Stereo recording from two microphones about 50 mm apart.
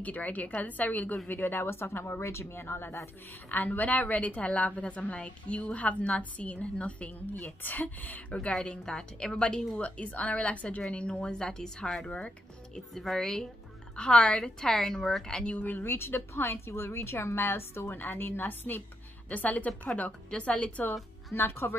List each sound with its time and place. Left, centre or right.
0.0 s a woman's voice: left
1.3 s speech: left
3.4 s a woman's voice: left
8.3 s a woman's voice: left
15.6 s a woman's voice: left
20.1 s a woman's voice: centre
21.4 s speech: left